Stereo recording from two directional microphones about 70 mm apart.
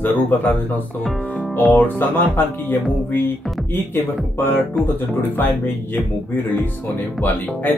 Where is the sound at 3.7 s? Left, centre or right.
Left.